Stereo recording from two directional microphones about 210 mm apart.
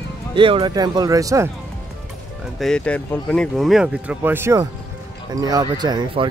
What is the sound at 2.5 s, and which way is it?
Speech, 5° left (ahead or behind).